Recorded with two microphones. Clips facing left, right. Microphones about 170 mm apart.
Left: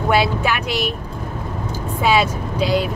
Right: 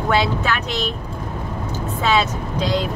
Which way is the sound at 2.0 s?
10° left (ahead or behind).